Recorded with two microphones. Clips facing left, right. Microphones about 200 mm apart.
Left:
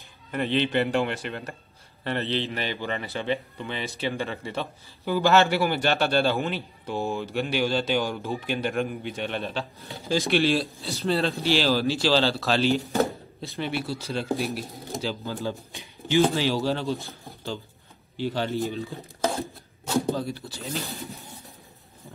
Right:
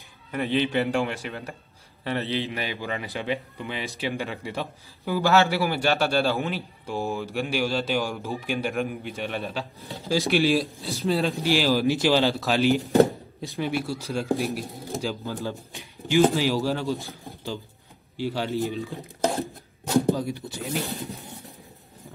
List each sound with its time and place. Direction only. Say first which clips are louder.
0.3 s speech: even; 5° right (ahead or behind)
15.2 s speech: even; centre (ahead or behind)
20.2 s speech: right 2 dB; 15° right (ahead or behind)